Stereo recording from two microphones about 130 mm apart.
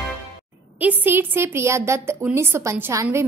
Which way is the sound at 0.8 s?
15° right (ahead or behind).